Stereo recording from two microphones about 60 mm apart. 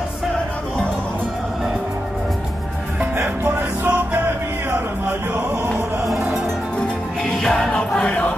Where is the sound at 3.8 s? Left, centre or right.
Right.